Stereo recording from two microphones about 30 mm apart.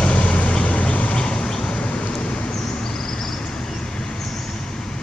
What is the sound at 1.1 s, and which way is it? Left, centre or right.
Vehicle, left.